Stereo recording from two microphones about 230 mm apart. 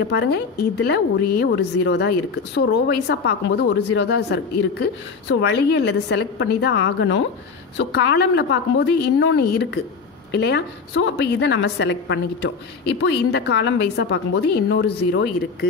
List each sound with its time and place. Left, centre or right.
0.1 s a woman's voice: left